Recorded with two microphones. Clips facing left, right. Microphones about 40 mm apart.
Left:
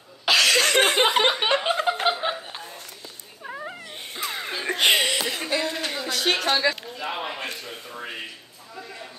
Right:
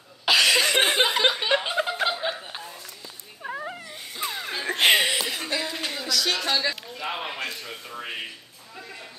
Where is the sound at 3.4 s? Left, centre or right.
Centre.